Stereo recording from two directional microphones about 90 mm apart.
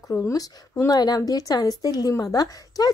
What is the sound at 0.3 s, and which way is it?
A woman's voice, 40° left (ahead or behind).